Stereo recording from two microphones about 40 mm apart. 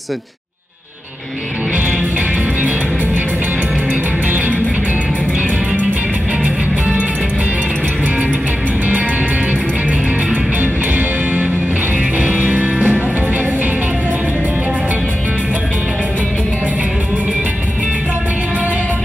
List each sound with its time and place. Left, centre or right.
3.9 s music: right
6.4 s music: right
10.6 s music: right